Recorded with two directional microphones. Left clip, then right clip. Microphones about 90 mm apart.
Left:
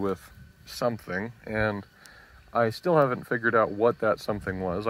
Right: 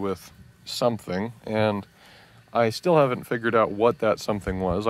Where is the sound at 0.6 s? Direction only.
35° right (ahead or behind).